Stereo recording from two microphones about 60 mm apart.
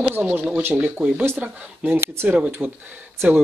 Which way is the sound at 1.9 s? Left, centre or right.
Right.